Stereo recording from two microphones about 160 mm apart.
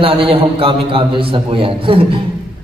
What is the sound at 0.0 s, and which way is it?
A man's voice, 35° right (ahead or behind).